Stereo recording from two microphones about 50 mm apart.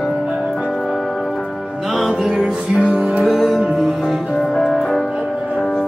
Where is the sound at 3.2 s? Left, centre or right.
Centre.